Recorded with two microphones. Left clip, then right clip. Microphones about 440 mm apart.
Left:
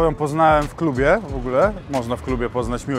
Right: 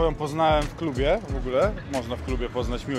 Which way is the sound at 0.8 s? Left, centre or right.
Left.